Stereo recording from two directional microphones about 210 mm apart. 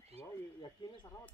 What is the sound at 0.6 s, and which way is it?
Speech, 20° left (ahead or behind).